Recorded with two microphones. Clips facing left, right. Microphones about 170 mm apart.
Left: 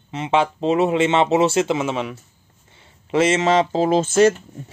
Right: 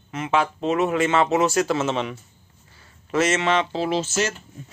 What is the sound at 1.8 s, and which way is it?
Speech, 10° left (ahead or behind).